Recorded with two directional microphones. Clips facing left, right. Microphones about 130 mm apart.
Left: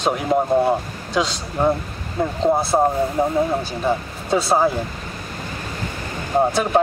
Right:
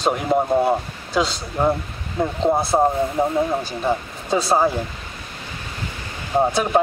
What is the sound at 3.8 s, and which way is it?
Speech, centre (ahead or behind).